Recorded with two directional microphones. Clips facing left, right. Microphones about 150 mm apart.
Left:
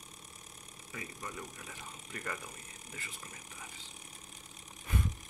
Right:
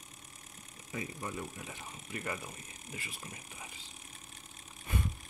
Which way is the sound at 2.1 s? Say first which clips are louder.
Right 3 dB; 10° right (ahead or behind).